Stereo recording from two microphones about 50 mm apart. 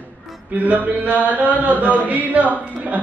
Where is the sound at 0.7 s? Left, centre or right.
Right.